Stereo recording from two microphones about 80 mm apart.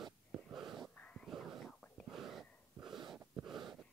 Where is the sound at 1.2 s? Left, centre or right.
Centre.